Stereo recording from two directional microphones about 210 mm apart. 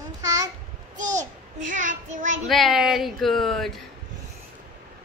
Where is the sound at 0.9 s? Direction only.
35° right (ahead or behind).